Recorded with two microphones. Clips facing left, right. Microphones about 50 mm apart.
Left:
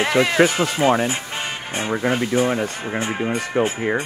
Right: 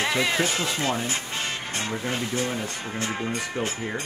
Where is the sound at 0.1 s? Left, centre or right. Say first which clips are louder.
Left 8 dB; left.